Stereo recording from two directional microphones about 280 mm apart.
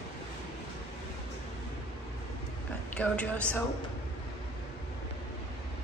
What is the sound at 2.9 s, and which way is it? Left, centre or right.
Speech, centre.